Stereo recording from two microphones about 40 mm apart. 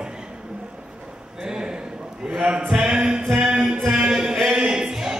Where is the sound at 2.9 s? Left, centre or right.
Right.